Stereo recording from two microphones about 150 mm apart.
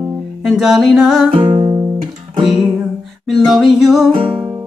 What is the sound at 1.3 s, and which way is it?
Music, 35° right (ahead or behind).